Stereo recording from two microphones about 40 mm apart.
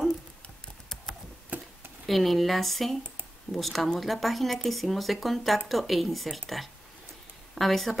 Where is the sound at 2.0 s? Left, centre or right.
Centre.